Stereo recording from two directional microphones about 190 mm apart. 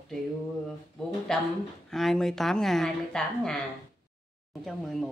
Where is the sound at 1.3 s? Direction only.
5° left (ahead or behind).